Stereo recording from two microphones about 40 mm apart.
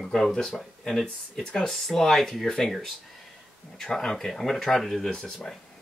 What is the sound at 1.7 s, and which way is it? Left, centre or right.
Speech, centre.